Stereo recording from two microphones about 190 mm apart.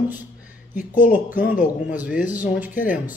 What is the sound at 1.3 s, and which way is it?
Speech, 10° right (ahead or behind).